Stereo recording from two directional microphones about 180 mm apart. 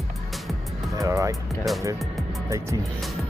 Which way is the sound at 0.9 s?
15° right (ahead or behind).